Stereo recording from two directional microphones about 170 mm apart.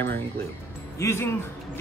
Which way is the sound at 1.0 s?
15° left (ahead or behind).